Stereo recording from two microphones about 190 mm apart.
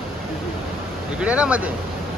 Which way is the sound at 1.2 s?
5° right (ahead or behind).